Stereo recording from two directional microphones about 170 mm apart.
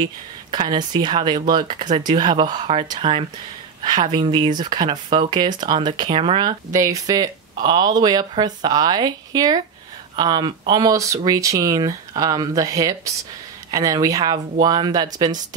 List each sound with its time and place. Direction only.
0.0 s speech: 25° right (ahead or behind)
6.7 s speech: 20° right (ahead or behind)